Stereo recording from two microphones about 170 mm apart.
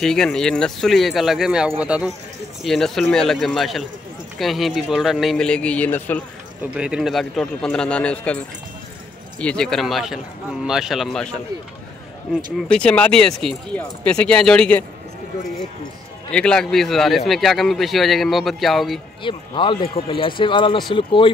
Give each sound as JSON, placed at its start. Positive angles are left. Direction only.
{"t": 0.0, "sound": "a man's voice", "side_deg": 5}
{"t": 6.6, "sound": "a man's voice", "side_deg": -5}
{"t": 9.4, "sound": "a man's voice", "side_deg": 5}
{"t": 12.5, "sound": "a man's voice", "side_deg": 5}
{"t": 16.3, "sound": "a man's voice", "side_deg": 5}
{"t": 19.2, "sound": "a man's voice", "side_deg": 30}